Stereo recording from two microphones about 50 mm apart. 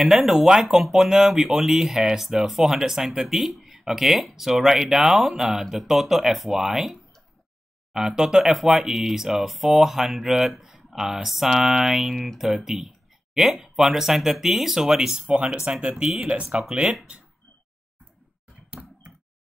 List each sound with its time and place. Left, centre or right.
0.0 s speech: centre
15.8 s speech: right
16.6 s speech: centre
18.7 s a sound: right